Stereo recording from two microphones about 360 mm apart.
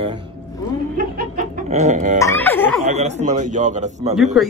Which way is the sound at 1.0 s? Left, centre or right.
Right.